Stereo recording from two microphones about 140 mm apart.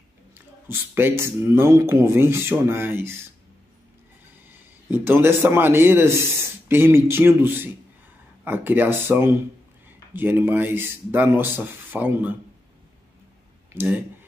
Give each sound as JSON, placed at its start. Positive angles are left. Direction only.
{"t": 0.7, "sound": "a man's voice", "side_deg": -15}
{"t": 4.5, "sound": "a man's voice", "side_deg": -15}
{"t": 13.7, "sound": "a man's voice", "side_deg": -15}